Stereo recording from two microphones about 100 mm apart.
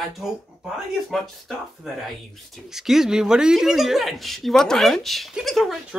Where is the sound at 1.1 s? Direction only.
Centre (ahead or behind).